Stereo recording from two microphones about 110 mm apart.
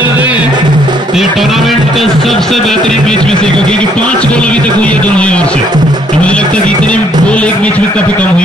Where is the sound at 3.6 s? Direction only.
10° left (ahead or behind).